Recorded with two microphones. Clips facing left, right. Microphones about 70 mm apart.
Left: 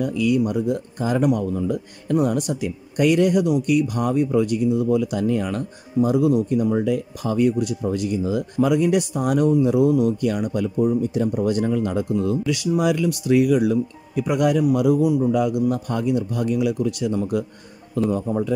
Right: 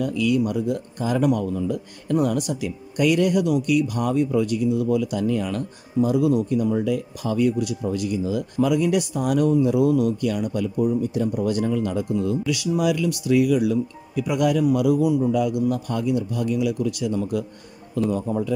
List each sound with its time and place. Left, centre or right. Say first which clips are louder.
0.0 s speech: left 1 dB; left